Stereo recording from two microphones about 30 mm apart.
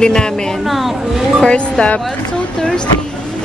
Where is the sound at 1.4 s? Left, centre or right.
Left.